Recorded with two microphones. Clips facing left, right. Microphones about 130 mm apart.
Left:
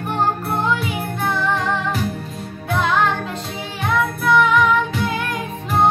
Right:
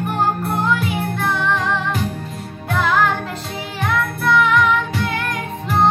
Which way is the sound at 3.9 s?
Centre (ahead or behind).